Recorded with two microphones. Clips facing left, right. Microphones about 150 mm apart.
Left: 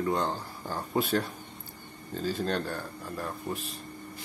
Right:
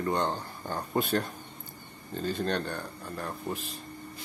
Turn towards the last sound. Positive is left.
turn(degrees=0)  # may be behind; listen again after turning